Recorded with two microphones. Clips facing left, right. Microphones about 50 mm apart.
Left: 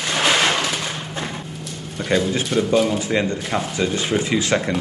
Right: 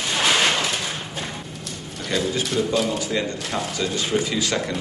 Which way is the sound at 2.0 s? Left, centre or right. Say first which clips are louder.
Left 4 dB; left.